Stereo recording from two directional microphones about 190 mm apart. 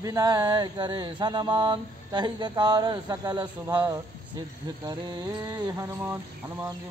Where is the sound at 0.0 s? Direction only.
20° right (ahead or behind).